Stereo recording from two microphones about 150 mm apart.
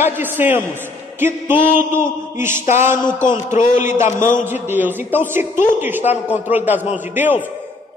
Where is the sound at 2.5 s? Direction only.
55° left (ahead or behind).